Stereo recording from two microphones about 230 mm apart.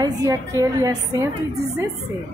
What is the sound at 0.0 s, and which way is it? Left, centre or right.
A woman's voice, centre.